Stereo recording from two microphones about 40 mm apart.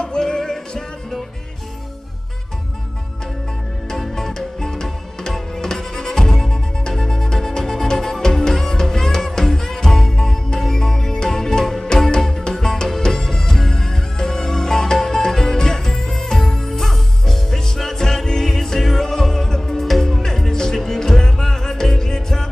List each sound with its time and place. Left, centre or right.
0.0 s music: centre
3.9 s music: centre